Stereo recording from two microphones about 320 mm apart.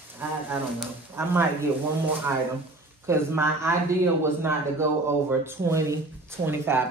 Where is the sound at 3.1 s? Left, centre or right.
Centre.